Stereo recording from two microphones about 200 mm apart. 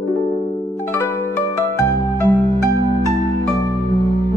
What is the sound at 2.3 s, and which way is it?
Music, 15° left (ahead or behind).